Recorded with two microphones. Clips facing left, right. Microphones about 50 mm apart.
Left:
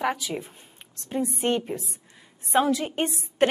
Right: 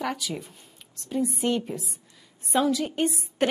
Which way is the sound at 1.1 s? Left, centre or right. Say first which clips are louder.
Even; left.